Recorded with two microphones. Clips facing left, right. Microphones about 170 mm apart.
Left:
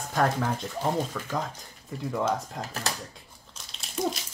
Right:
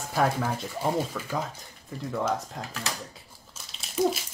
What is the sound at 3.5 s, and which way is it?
Crumpling, centre (ahead or behind).